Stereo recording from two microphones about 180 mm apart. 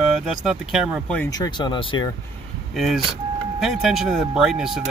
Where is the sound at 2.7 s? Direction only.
Centre (ahead or behind).